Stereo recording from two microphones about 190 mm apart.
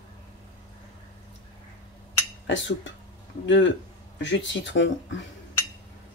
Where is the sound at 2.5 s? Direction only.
75° left (ahead or behind).